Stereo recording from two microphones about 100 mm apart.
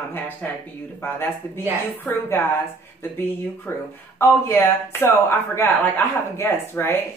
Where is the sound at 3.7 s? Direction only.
25° left (ahead or behind).